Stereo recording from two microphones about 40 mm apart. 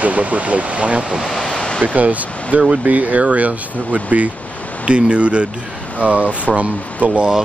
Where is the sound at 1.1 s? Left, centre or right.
Centre.